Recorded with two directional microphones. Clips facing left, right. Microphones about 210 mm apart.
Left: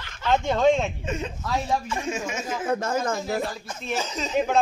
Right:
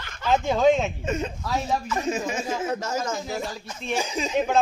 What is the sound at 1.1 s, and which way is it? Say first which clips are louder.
Speech: right 2 dB; 45° right (ahead or behind).